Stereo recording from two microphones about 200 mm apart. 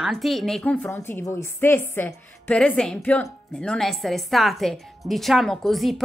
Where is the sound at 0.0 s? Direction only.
Centre (ahead or behind).